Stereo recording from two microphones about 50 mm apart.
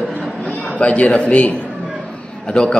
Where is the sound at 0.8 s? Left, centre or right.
Left.